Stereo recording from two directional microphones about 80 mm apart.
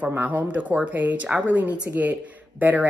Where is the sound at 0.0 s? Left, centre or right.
Right.